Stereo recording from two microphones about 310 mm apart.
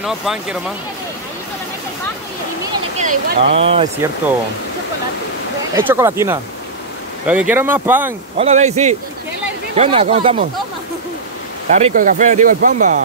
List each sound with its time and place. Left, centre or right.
0.0 s speech: centre
3.0 s speech: right
5.8 s speech: centre
8.4 s speech: right
11.7 s speech: right